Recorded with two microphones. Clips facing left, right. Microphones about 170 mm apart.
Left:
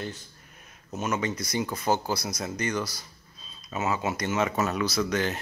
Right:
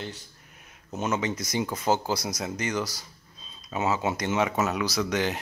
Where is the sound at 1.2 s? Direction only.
20° right (ahead or behind).